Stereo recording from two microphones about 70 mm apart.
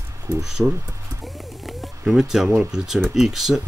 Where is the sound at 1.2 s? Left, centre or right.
Centre.